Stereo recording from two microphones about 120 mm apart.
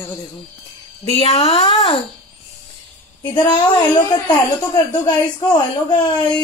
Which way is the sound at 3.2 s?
40° left (ahead or behind).